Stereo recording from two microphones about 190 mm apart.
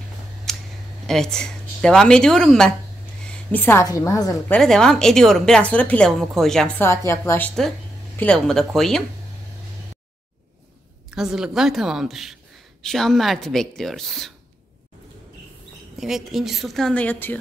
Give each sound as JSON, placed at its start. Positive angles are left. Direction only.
{"t": 0.5, "sound": "a sound", "side_deg": 0}
{"t": 1.0, "sound": "a woman's voice", "side_deg": 5}
{"t": 3.3, "sound": "a sound", "side_deg": 5}
{"t": 3.8, "sound": "a woman's voice", "side_deg": 15}
{"t": 4.6, "sound": "a woman's voice", "side_deg": 5}
{"t": 11.1, "sound": "a woman's voice", "side_deg": -5}
{"t": 16.0, "sound": "a woman's voice", "side_deg": 0}